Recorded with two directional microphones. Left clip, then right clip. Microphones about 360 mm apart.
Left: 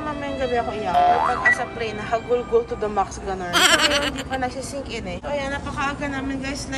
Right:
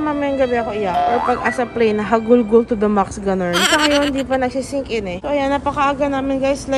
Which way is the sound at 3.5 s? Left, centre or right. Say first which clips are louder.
Right 1 dB; centre.